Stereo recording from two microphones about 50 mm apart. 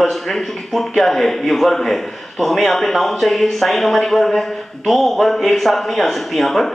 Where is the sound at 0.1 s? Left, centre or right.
Centre.